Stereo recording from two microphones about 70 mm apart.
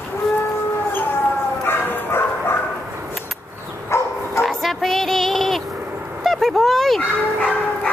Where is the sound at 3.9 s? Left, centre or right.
Left.